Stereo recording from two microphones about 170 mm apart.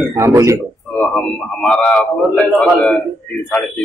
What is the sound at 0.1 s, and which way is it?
Speech, 15° right (ahead or behind).